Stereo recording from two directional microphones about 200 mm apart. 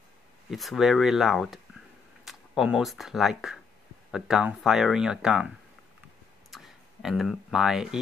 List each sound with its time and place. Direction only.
0.5 s speech: centre (ahead or behind)
6.5 s speech: centre (ahead or behind)